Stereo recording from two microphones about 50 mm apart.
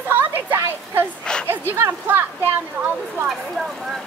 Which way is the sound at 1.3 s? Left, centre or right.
Centre.